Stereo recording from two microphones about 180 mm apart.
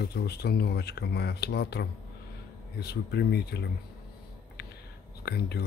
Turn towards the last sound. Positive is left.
turn(degrees=65)  # may be behind; listen again after turning